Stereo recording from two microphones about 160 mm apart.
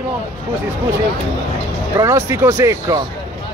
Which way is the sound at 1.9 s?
15° right (ahead or behind).